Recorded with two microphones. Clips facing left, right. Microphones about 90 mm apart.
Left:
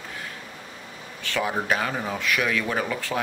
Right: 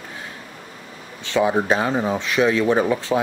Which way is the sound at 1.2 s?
20° right (ahead or behind).